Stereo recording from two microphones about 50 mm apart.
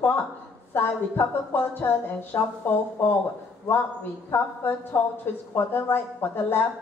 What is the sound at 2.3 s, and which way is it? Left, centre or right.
Speech, left.